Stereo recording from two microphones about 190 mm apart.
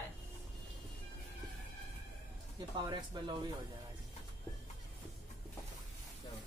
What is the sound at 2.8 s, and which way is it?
Speech, 25° right (ahead or behind).